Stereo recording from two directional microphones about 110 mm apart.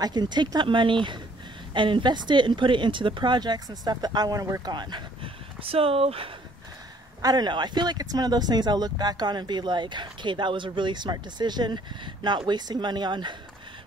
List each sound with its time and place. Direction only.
0.0 s speech: 40° right (ahead or behind); by 6.3 s 60° right (ahead or behind)
7.2 s speech: 35° right (ahead or behind)